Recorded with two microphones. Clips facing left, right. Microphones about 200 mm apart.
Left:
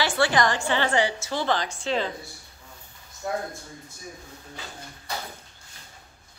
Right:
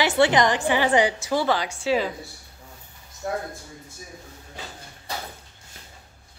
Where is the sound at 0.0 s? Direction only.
20° right (ahead or behind).